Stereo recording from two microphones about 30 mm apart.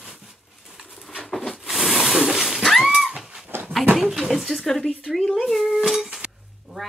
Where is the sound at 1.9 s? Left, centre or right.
Centre.